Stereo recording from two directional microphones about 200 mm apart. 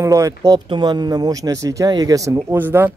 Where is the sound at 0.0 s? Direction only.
15° right (ahead or behind).